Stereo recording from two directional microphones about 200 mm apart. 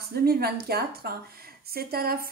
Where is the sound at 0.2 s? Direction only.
50° right (ahead or behind).